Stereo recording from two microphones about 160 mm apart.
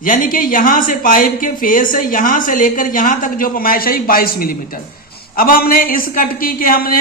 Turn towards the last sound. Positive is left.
turn(degrees=65)  # may be behind; listen again after turning